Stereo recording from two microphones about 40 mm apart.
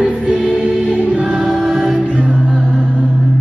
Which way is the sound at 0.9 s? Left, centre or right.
Right.